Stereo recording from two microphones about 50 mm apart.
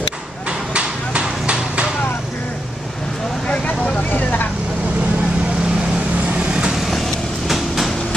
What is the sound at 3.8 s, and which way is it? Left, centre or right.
Vehicle, left.